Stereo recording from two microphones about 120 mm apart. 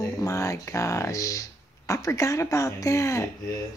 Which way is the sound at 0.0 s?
25° left (ahead or behind).